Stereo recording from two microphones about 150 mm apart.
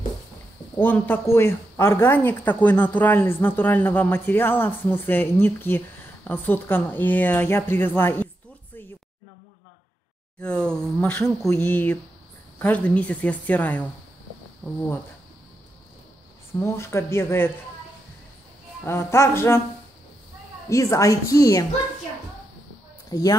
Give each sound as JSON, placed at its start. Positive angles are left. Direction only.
{"t": 0.7, "sound": "speech", "side_deg": 10}
{"t": 10.4, "sound": "speech", "side_deg": 5}
{"t": 16.6, "sound": "speech", "side_deg": 15}
{"t": 18.9, "sound": "speech", "side_deg": 20}
{"t": 20.7, "sound": "a woman's voice", "side_deg": 20}
{"t": 23.0, "sound": "speech", "side_deg": 25}